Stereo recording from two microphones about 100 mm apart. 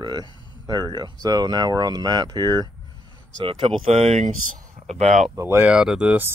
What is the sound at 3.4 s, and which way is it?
Speech, 60° right (ahead or behind).